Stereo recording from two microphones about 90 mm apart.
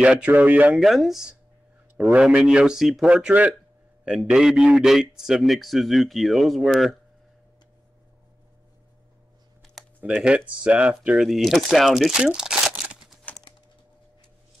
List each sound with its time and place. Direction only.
0.0 s speech: 10° right (ahead or behind)
0.7 s a man's voice: centre (ahead or behind)
10.2 s speech: 15° right (ahead or behind)
11.1 s speech: centre (ahead or behind)